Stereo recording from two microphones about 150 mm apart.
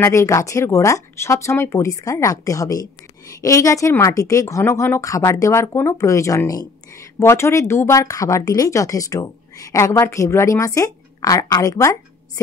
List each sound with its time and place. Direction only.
0.0 s a woman's voice: 20° left (ahead or behind)